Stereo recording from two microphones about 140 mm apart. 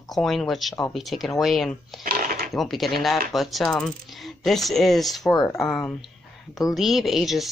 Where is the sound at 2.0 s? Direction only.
90° right.